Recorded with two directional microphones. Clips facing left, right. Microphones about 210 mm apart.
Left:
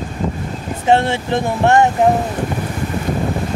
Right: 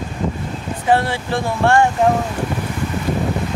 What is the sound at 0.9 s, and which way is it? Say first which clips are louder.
Speech: left 3 dB; 25° left (ahead or behind).